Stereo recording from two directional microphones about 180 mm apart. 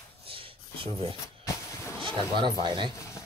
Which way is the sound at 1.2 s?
15° left (ahead or behind).